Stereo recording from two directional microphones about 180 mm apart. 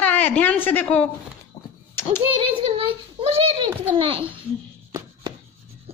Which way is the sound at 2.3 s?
30° right (ahead or behind).